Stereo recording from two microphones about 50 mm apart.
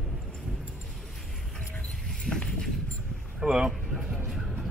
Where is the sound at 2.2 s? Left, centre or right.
Centre.